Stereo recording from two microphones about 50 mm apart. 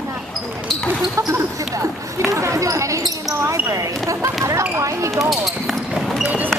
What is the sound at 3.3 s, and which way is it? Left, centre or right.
Basketball bounce, right.